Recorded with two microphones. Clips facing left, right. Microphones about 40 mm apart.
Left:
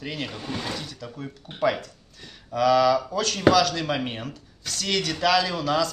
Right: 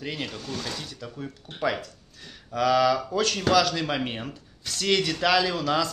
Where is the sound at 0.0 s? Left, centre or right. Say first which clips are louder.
Even; centre.